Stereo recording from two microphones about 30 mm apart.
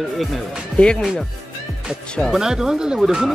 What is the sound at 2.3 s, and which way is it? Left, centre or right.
Speech, centre.